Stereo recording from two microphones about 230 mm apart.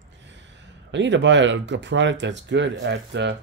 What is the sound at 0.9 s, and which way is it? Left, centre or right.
Speech, right.